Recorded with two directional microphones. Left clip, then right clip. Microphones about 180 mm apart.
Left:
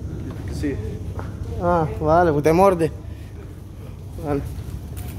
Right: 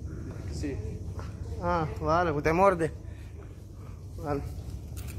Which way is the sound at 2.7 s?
15° left (ahead or behind).